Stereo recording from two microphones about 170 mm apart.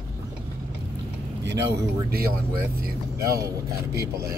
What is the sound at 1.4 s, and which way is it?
Speech, 80° right.